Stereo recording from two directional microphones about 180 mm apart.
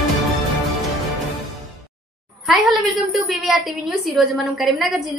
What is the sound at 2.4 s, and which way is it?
A woman's voice, centre (ahead or behind).